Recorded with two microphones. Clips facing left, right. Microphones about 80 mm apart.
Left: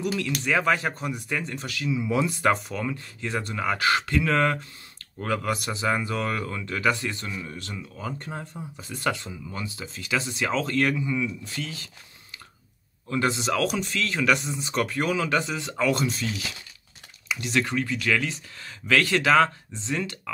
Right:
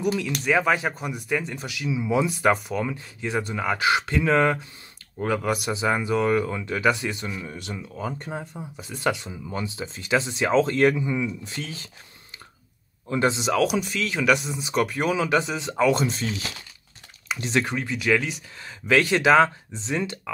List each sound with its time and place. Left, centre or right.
0.5 s speech: centre; by 11.9 s right
13.1 s speech: right
16.1 s speech: right